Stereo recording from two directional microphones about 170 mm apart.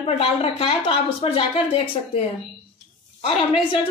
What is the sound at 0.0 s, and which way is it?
A woman's voice, 35° left (ahead or behind).